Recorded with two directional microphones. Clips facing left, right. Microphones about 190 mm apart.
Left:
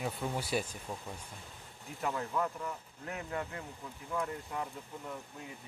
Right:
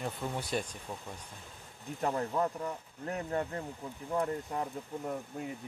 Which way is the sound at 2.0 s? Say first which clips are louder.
Right 3 dB; 40° right (ahead or behind).